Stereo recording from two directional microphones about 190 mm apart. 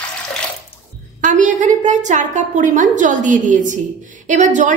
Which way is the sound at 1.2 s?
40° right (ahead or behind).